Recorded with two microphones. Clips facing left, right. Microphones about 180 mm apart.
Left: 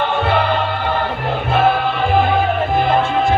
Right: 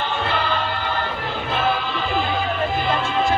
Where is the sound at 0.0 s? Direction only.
60° left (ahead or behind).